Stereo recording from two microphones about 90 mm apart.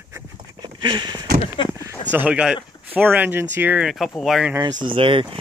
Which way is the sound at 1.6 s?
60° left (ahead or behind).